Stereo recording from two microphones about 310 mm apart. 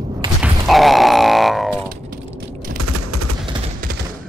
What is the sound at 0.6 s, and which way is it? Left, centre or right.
Grunt, centre.